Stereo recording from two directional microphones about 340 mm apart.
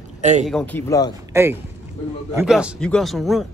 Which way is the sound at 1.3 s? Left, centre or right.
Centre.